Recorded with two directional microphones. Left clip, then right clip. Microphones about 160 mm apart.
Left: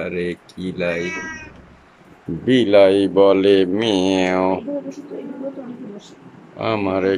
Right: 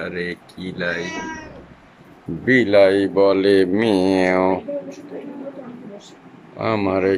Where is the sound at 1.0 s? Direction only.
45° right (ahead or behind).